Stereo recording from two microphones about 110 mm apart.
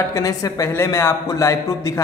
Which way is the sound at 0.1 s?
30° left (ahead or behind).